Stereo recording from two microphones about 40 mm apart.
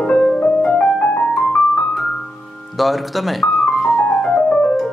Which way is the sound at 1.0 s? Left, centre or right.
Left.